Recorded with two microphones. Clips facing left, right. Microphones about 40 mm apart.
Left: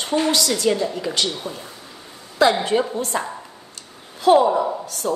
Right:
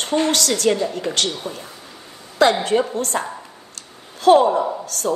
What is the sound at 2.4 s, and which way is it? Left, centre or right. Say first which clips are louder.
Speech: right 1 dB; right.